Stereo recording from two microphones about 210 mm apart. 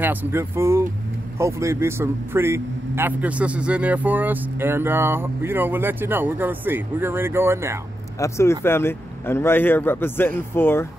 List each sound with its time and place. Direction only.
0.0 s a man's voice: 10° right (ahead or behind)
8.2 s speech: 15° left (ahead or behind)